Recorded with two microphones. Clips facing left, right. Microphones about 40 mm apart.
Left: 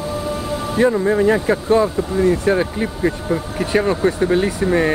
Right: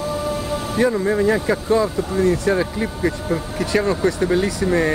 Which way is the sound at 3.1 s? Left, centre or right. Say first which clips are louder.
Left 2 dB; centre.